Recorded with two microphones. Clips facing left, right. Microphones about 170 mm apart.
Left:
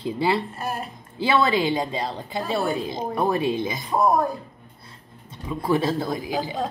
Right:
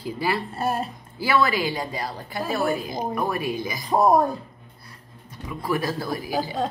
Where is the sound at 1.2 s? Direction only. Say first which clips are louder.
Left 1 dB; 20° left (ahead or behind).